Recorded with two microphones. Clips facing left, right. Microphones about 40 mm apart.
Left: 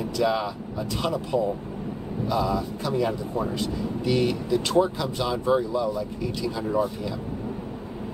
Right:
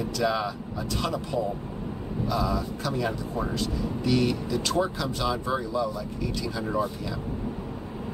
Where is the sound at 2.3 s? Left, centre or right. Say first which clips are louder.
Left 3 dB; centre.